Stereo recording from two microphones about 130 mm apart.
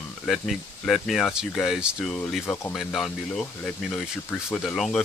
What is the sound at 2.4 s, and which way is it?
Speech, 20° left (ahead or behind).